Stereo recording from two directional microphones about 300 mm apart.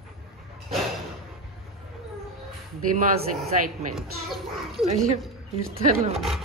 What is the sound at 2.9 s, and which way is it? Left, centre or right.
Speech, right.